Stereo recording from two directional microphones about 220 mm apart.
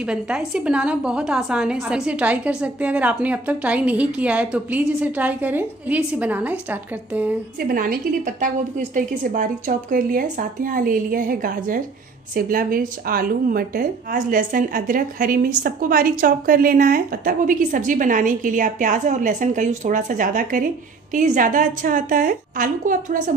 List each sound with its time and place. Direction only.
0.0 s a woman's voice: 5° right (ahead or behind)
7.6 s a woman's voice: 40° right (ahead or behind)